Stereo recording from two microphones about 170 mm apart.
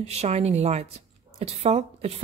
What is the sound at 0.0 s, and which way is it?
A woman's voice, 40° right (ahead or behind).